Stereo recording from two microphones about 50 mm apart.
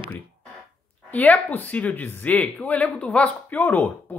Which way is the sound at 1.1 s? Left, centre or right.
Left.